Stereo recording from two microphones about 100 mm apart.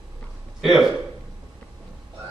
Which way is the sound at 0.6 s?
Centre (ahead or behind).